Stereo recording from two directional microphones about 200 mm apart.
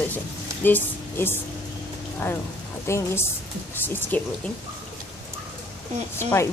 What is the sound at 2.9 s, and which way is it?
A woman's voice, 15° left (ahead or behind).